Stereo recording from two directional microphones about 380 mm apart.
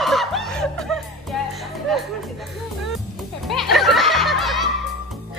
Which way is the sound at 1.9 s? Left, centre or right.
Centre.